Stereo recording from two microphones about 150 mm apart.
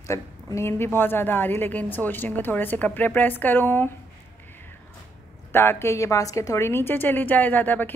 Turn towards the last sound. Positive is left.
turn(degrees=10)  # may be behind; listen again after turning